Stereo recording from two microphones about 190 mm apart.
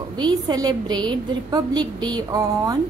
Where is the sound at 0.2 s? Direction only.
20° right (ahead or behind).